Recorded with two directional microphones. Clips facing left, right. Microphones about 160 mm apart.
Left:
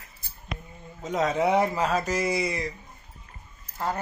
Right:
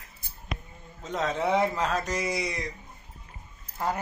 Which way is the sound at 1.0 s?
10° left (ahead or behind).